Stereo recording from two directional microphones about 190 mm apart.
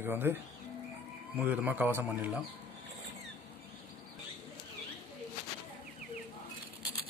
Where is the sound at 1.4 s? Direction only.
10° right (ahead or behind).